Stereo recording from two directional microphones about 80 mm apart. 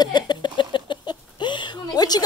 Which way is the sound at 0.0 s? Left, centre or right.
Left.